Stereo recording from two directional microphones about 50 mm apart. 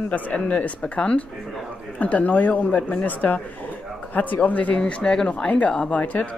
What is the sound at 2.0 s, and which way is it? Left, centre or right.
A woman's voice, left.